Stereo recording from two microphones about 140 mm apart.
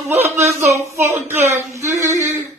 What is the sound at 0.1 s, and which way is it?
Speech, 15° right (ahead or behind).